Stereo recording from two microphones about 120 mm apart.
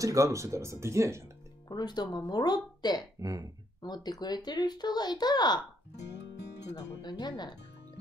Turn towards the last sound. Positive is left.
turn(degrees=35)  # may be behind; listen again after turning